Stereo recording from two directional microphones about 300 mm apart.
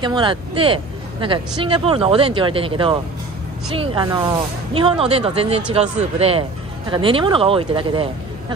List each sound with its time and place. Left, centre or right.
0.0 s speech: centre